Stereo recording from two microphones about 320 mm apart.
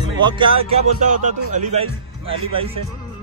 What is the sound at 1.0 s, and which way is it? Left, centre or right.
Speech, right.